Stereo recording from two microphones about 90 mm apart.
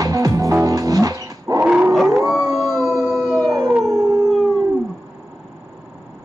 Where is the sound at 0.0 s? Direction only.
40° right (ahead or behind).